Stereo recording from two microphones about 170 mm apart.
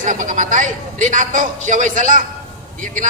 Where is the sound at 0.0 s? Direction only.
50° right (ahead or behind).